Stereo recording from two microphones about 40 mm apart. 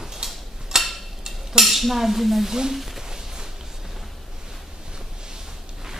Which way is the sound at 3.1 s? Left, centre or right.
Centre.